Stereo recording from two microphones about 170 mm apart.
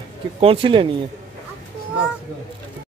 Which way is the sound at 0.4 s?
35° right (ahead or behind).